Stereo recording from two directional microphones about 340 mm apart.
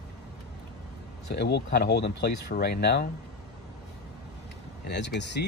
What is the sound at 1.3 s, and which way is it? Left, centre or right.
Speech, left.